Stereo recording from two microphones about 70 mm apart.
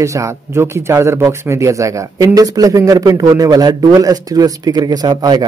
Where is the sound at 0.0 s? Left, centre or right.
Right.